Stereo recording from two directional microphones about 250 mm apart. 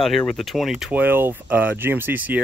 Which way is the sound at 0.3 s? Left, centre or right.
Centre.